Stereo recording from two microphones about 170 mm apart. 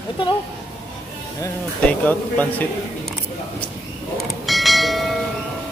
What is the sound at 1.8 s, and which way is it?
Speech, 10° left (ahead or behind).